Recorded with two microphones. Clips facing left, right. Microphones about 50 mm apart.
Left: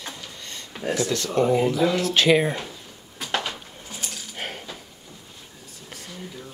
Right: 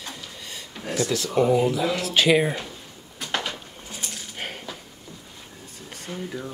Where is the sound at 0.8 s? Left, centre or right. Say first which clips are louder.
Left 2 dB; centre.